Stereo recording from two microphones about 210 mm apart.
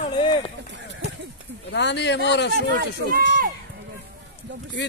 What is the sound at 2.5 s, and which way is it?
Speech, 45° right (ahead or behind).